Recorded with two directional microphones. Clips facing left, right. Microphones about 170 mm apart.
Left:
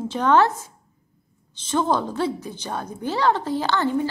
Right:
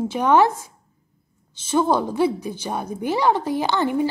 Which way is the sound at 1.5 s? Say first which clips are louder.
Right 3 dB; 10° right (ahead or behind).